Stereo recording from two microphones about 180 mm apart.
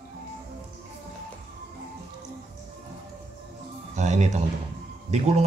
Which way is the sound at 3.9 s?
40° right (ahead or behind).